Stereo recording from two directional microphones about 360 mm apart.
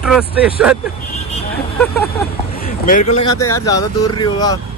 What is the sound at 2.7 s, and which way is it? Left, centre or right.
Speech, left.